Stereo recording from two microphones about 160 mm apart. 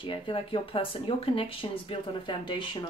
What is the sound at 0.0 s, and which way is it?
Speech, 30° left (ahead or behind).